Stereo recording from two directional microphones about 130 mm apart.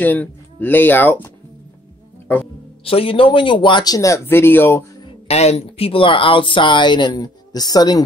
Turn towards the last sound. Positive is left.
turn(degrees=30)  # may be behind; listen again after turning